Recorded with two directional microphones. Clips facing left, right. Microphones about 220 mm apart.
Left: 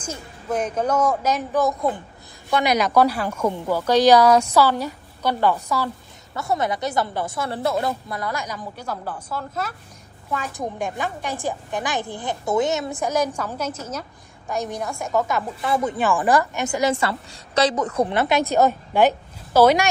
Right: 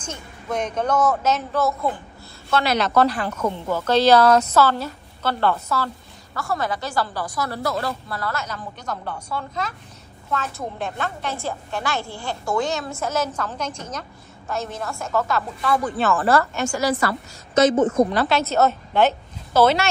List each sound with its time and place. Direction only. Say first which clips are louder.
0.0 s a woman's voice: left 2 dB; 5° left (ahead or behind); by 17.1 s 25° left (ahead or behind)
18.1 s a woman's voice: left 1 dB; 20° left (ahead or behind)